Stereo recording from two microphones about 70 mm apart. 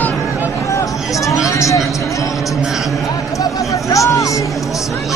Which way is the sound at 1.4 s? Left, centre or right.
Left.